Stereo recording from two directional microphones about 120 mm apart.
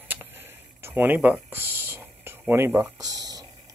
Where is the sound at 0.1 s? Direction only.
15° right (ahead or behind).